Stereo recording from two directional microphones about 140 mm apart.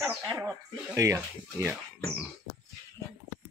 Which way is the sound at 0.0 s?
15° right (ahead or behind).